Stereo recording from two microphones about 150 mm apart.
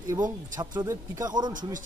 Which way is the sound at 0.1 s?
25° right (ahead or behind).